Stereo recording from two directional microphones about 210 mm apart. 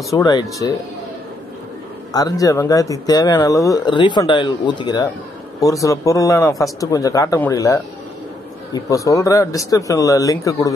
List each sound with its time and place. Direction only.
0.1 s speech: 20° left (ahead or behind)
2.1 s speech: 15° left (ahead or behind)